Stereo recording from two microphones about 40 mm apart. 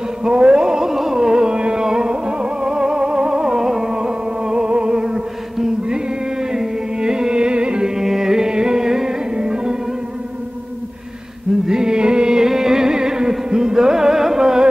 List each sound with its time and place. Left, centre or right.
0.2 s carnatic music: right
11.6 s music: centre